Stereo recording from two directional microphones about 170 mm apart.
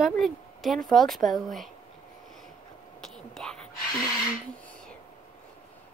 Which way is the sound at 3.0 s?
5° left (ahead or behind).